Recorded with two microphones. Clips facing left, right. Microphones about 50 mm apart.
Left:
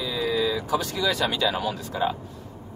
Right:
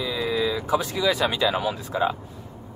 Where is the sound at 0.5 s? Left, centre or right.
Centre.